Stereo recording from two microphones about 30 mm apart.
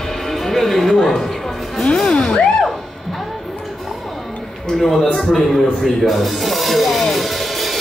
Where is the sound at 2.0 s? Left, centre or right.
Left.